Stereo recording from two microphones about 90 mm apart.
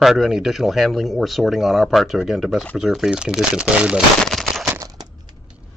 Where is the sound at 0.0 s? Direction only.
Centre (ahead or behind).